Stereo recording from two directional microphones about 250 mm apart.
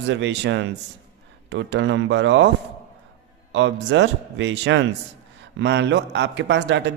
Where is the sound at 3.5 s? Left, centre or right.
Right.